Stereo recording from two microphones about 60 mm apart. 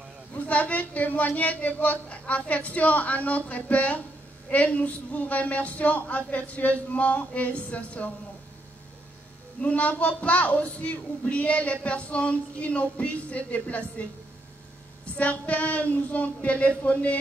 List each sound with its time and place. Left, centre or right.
0.5 s speech: left
9.6 s speech: left
15.1 s speech: left